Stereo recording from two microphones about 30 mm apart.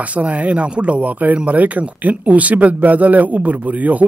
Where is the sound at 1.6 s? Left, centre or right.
Right.